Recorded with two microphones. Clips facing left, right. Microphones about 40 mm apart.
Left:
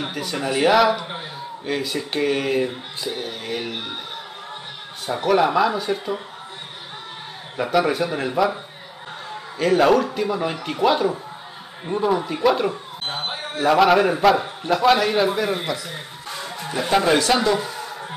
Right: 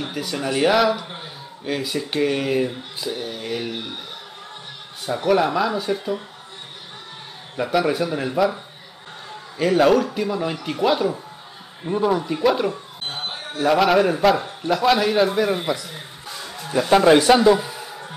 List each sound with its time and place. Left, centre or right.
0.1 s speech: centre
5.1 s speech: centre
7.5 s speech: centre
9.6 s speech: centre
13.1 s a sound: left
13.7 s speech: centre
15.9 s music: left
16.9 s speech: centre
17.5 s a sound: centre